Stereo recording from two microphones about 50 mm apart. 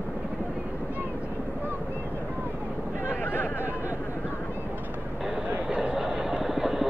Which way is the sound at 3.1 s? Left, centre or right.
Left.